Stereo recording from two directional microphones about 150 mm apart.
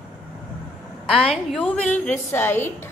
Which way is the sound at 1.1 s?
Centre (ahead or behind).